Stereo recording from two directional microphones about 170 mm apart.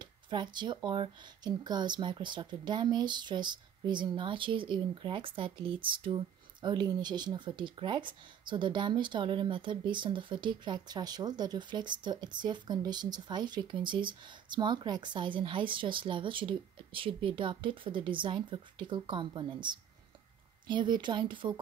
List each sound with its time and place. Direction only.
0.0 s speech: 25° right (ahead or behind)
20.6 s speech: 25° right (ahead or behind)